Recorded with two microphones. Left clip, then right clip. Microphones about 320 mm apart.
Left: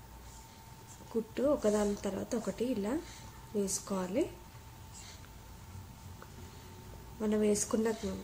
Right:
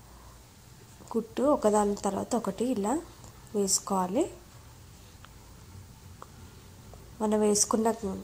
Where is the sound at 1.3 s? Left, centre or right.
Centre.